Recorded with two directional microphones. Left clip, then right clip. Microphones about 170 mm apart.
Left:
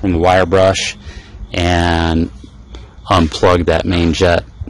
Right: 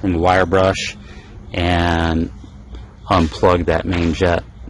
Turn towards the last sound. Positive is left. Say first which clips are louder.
# left 4 dB
turn(degrees=50)  # may be behind; listen again after turning